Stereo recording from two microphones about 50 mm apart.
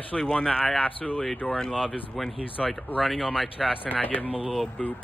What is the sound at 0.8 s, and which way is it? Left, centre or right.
Speech, left.